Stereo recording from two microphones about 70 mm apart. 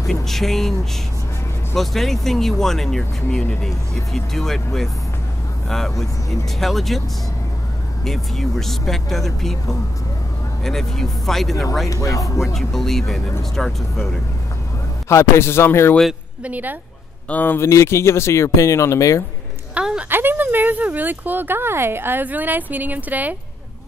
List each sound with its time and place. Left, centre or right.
0.0 s speech: centre
1.8 s speech: centre
8.0 s speech: centre
11.9 s speech: left
12.5 s speech: centre
15.0 s speech: left
16.4 s speech: right
17.3 s speech: left
17.6 s speech: left
19.7 s a woman's voice: centre
20.1 s speech: right